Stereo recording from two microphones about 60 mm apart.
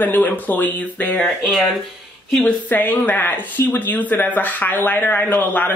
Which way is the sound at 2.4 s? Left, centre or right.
Left.